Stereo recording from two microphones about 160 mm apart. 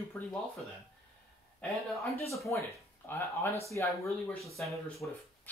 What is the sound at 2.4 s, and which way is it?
Speech, 15° left (ahead or behind).